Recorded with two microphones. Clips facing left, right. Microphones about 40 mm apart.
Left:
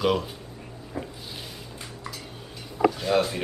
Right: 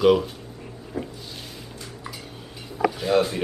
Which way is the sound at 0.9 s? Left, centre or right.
Left.